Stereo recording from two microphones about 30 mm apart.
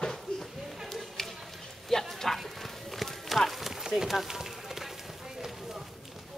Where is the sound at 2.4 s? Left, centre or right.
Centre.